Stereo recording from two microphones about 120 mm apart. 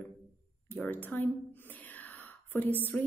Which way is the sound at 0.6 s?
15° left (ahead or behind).